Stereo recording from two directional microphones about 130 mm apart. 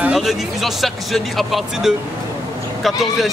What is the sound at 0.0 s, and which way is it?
Music, 5° right (ahead or behind).